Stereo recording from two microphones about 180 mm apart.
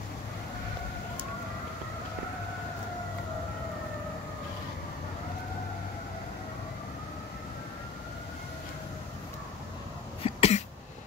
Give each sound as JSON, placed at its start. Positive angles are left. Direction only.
{"t": 10.2, "sound": "cough", "side_deg": 35}